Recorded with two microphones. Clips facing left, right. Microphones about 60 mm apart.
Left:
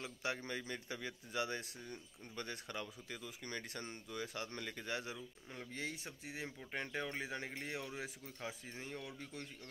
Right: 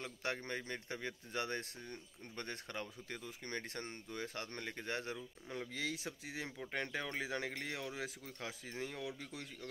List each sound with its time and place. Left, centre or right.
0.0 s speech: right
5.5 s speech: right
6.7 s speech: right